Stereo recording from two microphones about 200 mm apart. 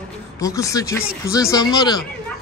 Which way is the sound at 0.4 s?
15° left (ahead or behind).